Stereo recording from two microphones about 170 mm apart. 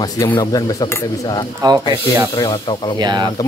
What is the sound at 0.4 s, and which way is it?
Speech, 20° left (ahead or behind).